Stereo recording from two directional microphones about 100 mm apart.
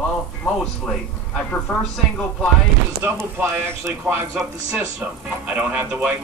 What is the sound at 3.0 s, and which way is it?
A man's voice, 25° right (ahead or behind).